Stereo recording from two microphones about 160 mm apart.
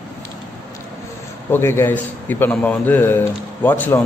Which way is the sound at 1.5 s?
15° left (ahead or behind).